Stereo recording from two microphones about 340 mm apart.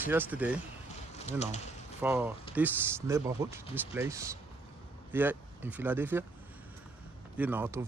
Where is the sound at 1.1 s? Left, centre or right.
Centre.